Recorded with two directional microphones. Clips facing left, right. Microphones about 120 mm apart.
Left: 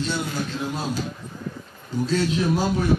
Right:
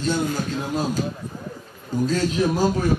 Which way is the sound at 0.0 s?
45° right (ahead or behind).